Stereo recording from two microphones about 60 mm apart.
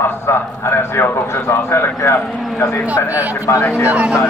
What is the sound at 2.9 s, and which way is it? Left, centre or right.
Speech, left.